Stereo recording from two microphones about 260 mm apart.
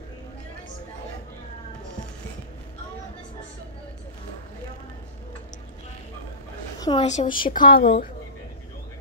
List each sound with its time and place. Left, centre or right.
6.8 s a woman's voice: left
7.8 s a woman's voice: left